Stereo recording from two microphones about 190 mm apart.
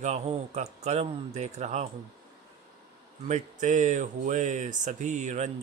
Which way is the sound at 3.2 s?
40° right (ahead or behind).